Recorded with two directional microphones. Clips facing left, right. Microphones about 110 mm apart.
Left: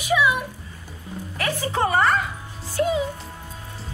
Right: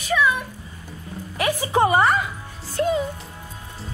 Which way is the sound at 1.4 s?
15° right (ahead or behind).